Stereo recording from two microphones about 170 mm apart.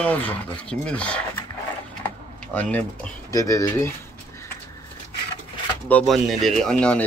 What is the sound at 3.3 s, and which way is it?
Pigeon, 20° left (ahead or behind).